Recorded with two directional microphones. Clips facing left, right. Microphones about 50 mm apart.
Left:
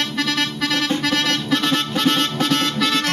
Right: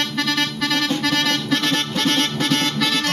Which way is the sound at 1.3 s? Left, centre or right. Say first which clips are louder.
Left 1 dB; centre.